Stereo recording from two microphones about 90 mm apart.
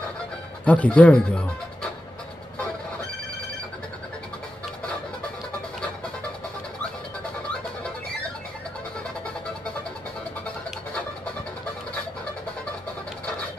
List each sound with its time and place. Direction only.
0.7 s speech: 15° left (ahead or behind)